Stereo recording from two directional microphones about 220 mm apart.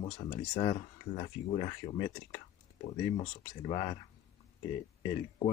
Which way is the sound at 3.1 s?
25° left (ahead or behind).